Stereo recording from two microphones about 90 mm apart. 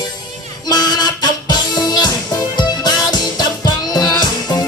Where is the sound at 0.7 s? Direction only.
50° left (ahead or behind).